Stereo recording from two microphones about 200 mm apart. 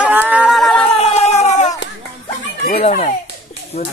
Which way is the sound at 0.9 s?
35° left (ahead or behind).